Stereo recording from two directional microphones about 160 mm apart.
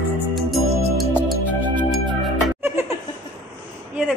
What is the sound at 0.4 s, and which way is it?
Music, centre (ahead or behind).